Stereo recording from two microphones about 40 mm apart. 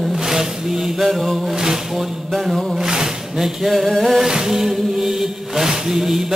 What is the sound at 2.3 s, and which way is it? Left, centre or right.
Music, centre.